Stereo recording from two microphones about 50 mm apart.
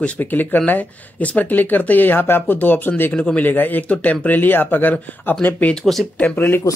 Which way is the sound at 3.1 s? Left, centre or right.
Left.